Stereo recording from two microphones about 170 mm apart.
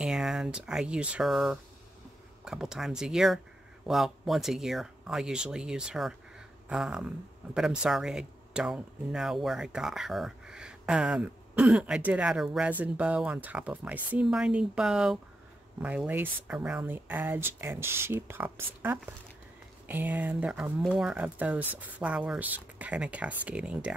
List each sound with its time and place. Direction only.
0.0 s speech: 5° right (ahead or behind)